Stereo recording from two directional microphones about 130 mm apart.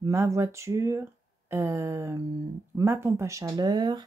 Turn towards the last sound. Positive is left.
turn(degrees=-35)  # may be behind; listen again after turning